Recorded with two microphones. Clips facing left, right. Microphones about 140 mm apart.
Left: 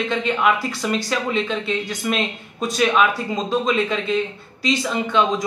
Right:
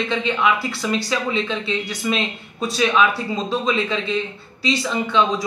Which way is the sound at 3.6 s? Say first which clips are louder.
Left 1 dB; 50° left (ahead or behind).